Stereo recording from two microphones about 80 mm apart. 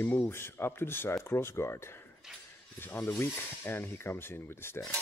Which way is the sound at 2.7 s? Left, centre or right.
Left.